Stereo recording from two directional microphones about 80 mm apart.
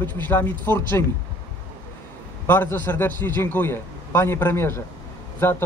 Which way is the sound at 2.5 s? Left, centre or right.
Left.